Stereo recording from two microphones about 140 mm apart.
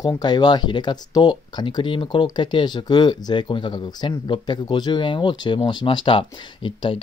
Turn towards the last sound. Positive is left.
turn(degrees=40)  # may be behind; listen again after turning